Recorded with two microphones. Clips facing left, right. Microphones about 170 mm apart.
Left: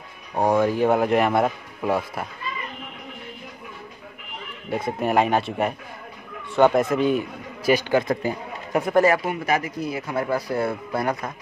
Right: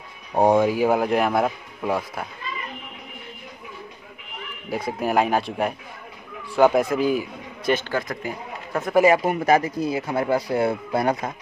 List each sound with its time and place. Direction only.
0.6 s a man's voice: 5° right (ahead or behind)
4.6 s a man's voice: centre (ahead or behind)
8.1 s a man's voice: 25° left (ahead or behind)
8.9 s speech: 15° right (ahead or behind)
9.3 s speech: 35° right (ahead or behind)